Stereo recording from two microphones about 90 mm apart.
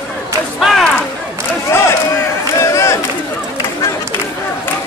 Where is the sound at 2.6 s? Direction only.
35° left (ahead or behind).